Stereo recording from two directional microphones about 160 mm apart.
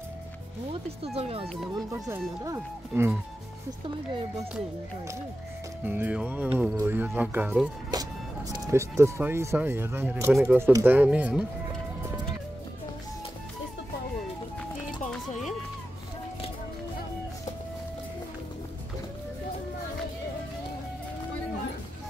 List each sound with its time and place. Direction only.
1.0 s speech: 40° right (ahead or behind)
2.9 s speech: 5° right (ahead or behind)
5.9 s speech: 10° right (ahead or behind)
7.9 s music: 25° right (ahead or behind)
8.5 s speech: 20° right (ahead or behind)
10.6 s speech: 15° right (ahead or behind)